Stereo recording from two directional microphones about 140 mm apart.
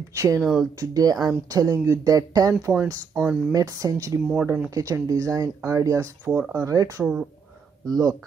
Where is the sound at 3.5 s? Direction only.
25° right (ahead or behind).